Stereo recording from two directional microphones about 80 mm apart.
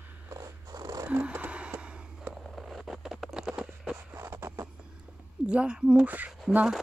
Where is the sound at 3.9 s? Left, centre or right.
Right.